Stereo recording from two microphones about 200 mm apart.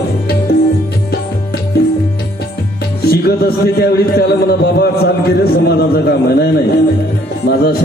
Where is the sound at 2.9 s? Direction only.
50° left (ahead or behind).